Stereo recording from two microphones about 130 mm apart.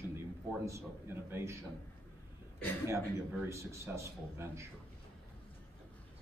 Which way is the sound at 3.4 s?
20° right (ahead or behind).